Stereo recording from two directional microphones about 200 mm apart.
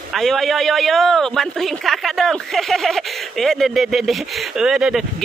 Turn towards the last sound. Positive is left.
turn(degrees=-5)  # may be behind; listen again after turning